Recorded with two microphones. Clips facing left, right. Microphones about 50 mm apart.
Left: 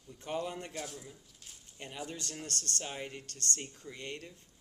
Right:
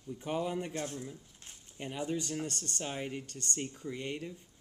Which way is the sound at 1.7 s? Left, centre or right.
Centre.